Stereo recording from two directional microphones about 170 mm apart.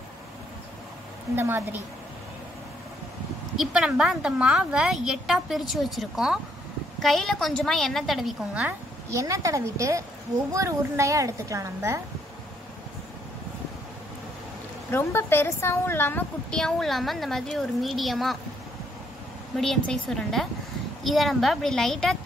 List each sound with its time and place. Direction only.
1.3 s a woman's voice: 15° right (ahead or behind)
3.5 s a woman's voice: 5° right (ahead or behind)
9.1 s a woman's voice: 20° right (ahead or behind)
14.9 s a woman's voice: 15° left (ahead or behind)
19.5 s a woman's voice: centre (ahead or behind)